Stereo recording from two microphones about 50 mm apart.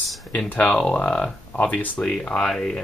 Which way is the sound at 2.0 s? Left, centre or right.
Centre.